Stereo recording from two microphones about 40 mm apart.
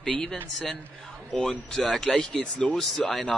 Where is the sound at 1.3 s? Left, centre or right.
Centre.